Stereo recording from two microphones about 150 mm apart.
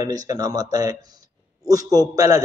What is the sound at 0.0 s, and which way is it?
A man's voice, 25° right (ahead or behind).